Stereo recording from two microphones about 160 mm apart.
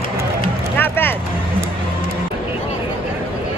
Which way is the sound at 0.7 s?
10° left (ahead or behind).